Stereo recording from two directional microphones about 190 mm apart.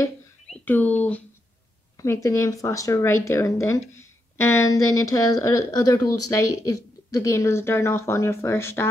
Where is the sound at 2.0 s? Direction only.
15° left (ahead or behind).